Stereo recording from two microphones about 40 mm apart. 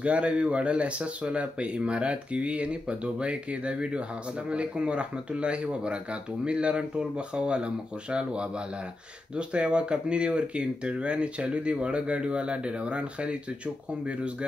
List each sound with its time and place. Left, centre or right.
0.0 s speech: right